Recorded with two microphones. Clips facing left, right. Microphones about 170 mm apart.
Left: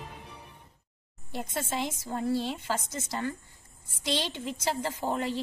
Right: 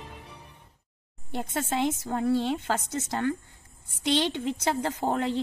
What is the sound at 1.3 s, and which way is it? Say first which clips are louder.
A woman's voice: right 4 dB; 60° right (ahead or behind).